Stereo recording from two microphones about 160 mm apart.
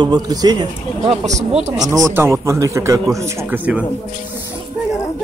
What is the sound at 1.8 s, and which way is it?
Speech, 20° right (ahead or behind).